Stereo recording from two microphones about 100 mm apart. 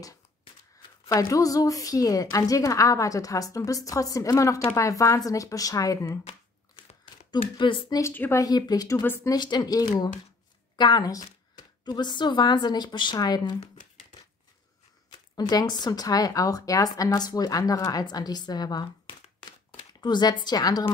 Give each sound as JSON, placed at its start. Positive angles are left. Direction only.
{"t": 1.0, "sound": "speech", "side_deg": 35}
{"t": 7.2, "sound": "a woman's voice", "side_deg": 50}
{"t": 8.1, "sound": "speech", "side_deg": 20}
{"t": 8.4, "sound": "speech", "side_deg": 40}
{"t": 9.0, "sound": "speech", "side_deg": 20}
{"t": 9.3, "sound": "a woman's voice", "side_deg": 45}
{"t": 15.0, "sound": "a woman's voice", "side_deg": 40}